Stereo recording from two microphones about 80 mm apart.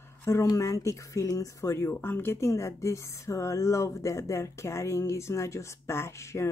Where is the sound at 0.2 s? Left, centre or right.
Left.